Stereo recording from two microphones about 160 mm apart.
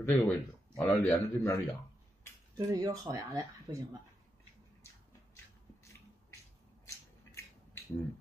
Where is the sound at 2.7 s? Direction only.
25° right (ahead or behind).